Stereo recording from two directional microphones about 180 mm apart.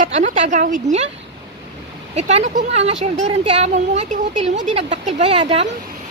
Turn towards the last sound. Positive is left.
turn(degrees=-35)  # may be behind; listen again after turning